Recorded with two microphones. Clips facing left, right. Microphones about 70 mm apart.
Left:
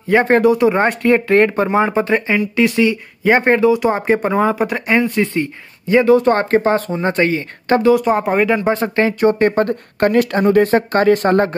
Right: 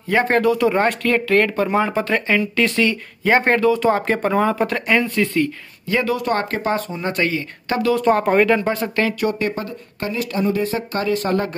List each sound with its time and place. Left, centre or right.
0.1 s speech: left
7.9 s speech: centre
8.5 s speech: left
9.6 s speech: left